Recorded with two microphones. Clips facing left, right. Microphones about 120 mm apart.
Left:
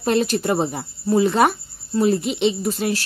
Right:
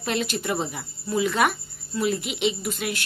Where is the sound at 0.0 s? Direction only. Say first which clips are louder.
Left 8 dB; 40° left (ahead or behind).